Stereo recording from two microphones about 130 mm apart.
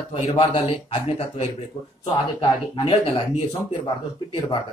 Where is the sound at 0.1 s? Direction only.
45° left (ahead or behind).